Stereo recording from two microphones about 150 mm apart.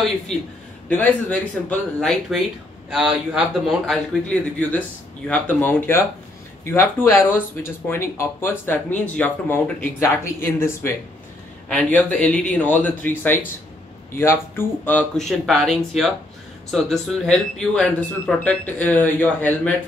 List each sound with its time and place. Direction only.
0.3 s speech: 5° left (ahead or behind)